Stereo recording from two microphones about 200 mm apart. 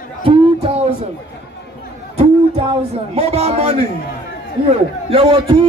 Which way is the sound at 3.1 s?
30° right (ahead or behind).